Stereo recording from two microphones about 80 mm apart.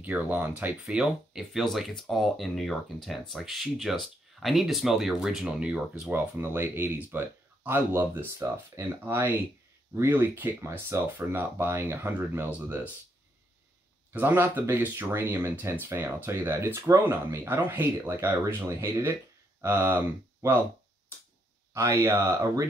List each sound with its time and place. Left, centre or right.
0.0 s speech: centre
0.8 s speech: centre
6.0 s speech: right
14.1 s speech: right
21.7 s speech: right